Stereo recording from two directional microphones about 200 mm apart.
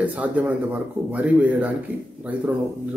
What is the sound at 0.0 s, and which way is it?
Speech, 5° right (ahead or behind).